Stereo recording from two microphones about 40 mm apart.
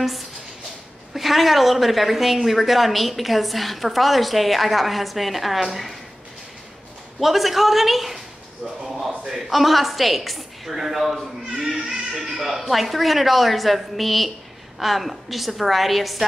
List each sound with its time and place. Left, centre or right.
1.1 s a woman's voice: centre
7.2 s a woman's voice: centre